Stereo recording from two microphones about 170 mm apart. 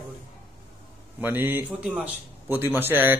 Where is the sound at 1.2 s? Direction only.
10° right (ahead or behind).